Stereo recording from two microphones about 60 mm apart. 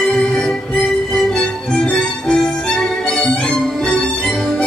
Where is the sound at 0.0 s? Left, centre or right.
Centre.